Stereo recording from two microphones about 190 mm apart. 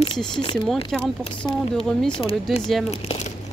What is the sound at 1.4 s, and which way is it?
Speech, centre (ahead or behind).